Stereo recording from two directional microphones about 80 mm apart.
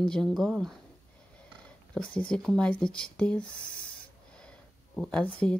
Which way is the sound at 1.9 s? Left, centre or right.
Centre.